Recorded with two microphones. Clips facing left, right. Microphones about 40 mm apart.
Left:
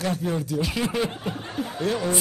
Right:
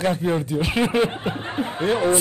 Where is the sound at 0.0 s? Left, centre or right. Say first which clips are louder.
Right 5 dB; right.